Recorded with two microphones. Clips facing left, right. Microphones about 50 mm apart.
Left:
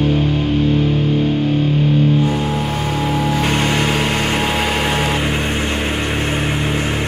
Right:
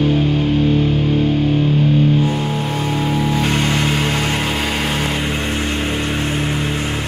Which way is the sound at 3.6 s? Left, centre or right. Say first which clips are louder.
Left 1 dB; centre.